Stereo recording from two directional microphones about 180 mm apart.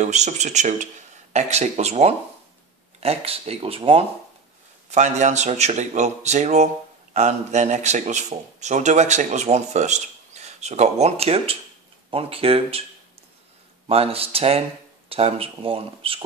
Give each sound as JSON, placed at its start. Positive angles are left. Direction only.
{"t": 0.0, "sound": "speech", "side_deg": -40}
{"t": 13.8, "sound": "speech", "side_deg": -35}